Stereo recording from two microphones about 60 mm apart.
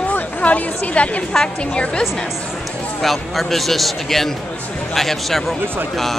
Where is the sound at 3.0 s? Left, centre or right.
Centre.